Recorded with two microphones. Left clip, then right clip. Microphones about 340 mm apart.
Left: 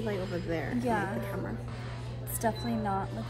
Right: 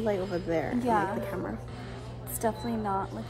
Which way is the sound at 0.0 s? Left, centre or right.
Right.